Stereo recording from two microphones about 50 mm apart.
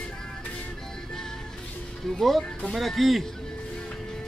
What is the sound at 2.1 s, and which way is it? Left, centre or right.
Speech, centre.